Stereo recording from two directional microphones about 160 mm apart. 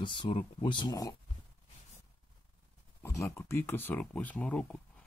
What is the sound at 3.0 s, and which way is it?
Speech, 20° left (ahead or behind).